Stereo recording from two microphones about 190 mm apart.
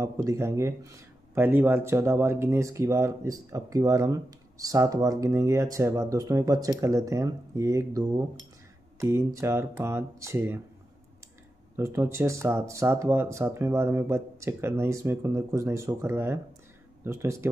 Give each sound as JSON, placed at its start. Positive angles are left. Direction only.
{"t": 0.0, "sound": "speech", "side_deg": -15}
{"t": 11.7, "sound": "speech", "side_deg": -15}